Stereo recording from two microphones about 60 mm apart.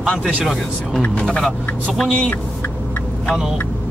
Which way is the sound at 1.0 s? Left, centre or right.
Centre.